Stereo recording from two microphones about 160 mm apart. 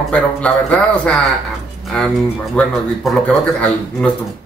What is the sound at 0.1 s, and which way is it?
A man's voice, 5° left (ahead or behind).